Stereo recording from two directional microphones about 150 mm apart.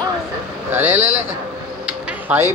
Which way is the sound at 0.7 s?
15° right (ahead or behind).